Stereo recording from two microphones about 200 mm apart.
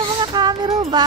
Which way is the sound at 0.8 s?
20° right (ahead or behind).